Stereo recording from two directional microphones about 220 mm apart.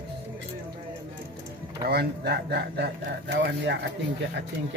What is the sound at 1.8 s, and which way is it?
Speech, 45° right (ahead or behind).